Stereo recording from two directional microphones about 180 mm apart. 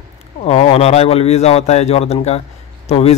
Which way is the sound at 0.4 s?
35° left (ahead or behind).